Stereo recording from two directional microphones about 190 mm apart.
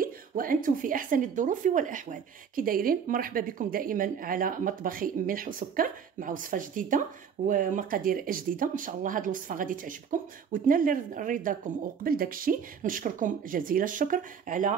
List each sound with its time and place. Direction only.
0.0 s a woman's voice: 45° right (ahead or behind)